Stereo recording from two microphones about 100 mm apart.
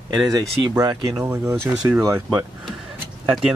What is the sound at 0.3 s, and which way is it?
Speech, 35° right (ahead or behind).